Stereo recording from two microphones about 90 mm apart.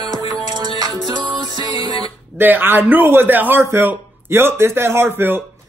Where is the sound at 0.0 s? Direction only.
45° right (ahead or behind).